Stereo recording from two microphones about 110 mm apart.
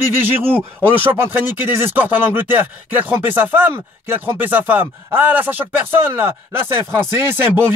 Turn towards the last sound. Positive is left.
turn(degrees=-20)  # may be behind; listen again after turning